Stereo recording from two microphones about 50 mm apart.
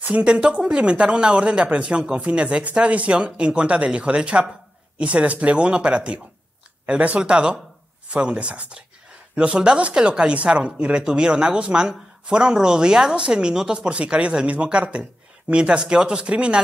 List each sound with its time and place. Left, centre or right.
0.2 s a woman's voice: centre